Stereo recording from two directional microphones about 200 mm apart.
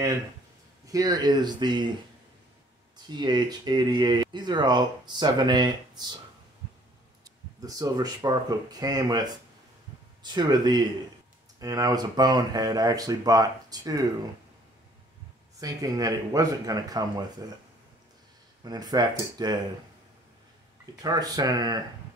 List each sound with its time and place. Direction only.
0.8 s speech: 20° right (ahead or behind)
3.2 s speech: 20° right (ahead or behind)
7.2 s speech: 20° right (ahead or behind)
15.6 s speech: 20° right (ahead or behind)
18.6 s speech: 20° right (ahead or behind)
21.0 s speech: 20° right (ahead or behind)